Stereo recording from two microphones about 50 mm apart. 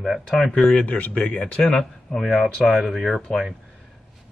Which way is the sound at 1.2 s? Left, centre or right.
Centre.